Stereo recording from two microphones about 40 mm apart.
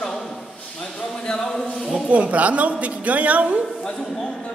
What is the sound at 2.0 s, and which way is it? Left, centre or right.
A woman's voice, right.